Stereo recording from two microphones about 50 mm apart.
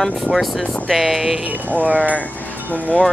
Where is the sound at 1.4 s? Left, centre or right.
Right.